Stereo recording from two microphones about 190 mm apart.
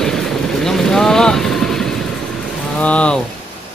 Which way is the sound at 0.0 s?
Centre (ahead or behind).